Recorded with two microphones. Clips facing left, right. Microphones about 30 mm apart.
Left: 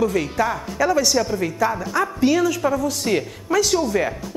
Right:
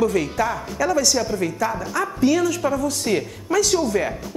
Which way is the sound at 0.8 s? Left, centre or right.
Centre.